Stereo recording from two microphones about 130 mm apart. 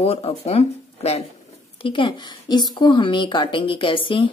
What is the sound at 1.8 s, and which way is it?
A woman's voice, 40° left (ahead or behind).